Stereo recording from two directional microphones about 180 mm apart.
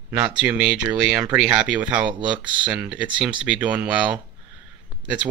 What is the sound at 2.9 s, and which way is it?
Speech, 5° right (ahead or behind).